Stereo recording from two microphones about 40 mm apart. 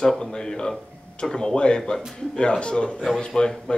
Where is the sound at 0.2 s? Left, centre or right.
Centre.